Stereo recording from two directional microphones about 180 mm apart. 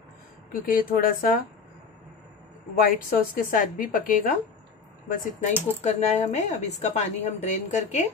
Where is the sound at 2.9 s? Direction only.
50° left (ahead or behind).